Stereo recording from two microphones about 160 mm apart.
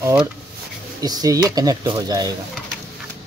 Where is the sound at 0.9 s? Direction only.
25° right (ahead or behind).